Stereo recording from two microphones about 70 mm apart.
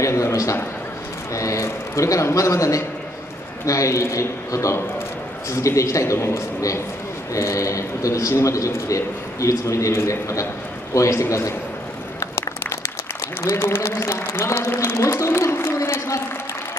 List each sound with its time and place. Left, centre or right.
0.0 s a man's voice: left
12.4 s applause: left
13.4 s speech: left